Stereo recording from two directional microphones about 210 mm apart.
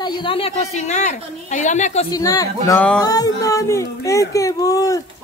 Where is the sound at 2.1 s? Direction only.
15° left (ahead or behind).